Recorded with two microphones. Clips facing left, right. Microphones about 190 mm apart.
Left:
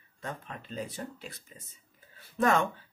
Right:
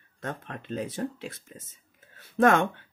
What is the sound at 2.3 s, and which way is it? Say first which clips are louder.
Speech: right 5 dB; 70° right (ahead or behind).